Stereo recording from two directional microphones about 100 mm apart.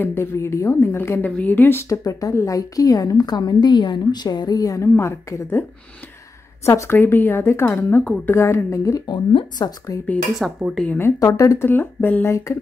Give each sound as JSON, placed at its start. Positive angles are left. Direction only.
{"t": 0.0, "sound": "a woman's voice", "side_deg": 25}
{"t": 7.0, "sound": "a woman's voice", "side_deg": 20}
{"t": 9.1, "sound": "speech", "side_deg": 65}
{"t": 10.0, "sound": "speech", "side_deg": 10}
{"t": 10.9, "sound": "speech", "side_deg": 25}